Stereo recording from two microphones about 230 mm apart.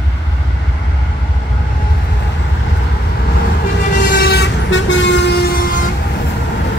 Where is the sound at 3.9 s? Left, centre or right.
Left.